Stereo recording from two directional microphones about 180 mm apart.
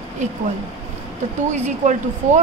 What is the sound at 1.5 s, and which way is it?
Speech, 40° right (ahead or behind).